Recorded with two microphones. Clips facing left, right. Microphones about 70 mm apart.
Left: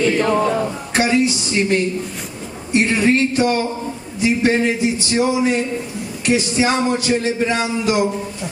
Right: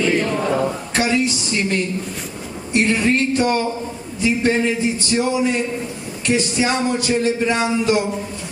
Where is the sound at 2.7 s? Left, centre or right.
Left.